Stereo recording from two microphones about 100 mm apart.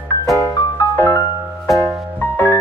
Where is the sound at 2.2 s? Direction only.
20° left (ahead or behind).